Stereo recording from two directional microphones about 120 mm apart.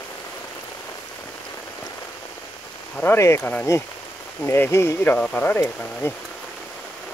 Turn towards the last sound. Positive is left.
turn(degrees=20)  # may be behind; listen again after turning